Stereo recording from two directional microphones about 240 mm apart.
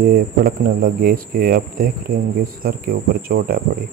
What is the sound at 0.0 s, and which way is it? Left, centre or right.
Speech, right.